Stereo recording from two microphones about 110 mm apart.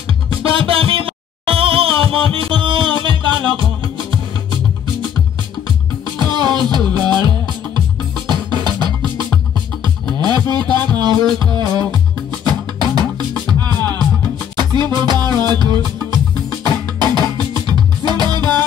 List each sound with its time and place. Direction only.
0.4 s music: 55° right (ahead or behind)
6.1 s music: 45° right (ahead or behind)
10.2 s music: 40° right (ahead or behind)